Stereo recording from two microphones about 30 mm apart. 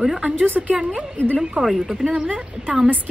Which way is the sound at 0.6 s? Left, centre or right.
Centre.